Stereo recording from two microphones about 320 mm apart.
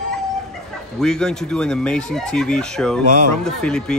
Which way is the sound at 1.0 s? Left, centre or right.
Centre.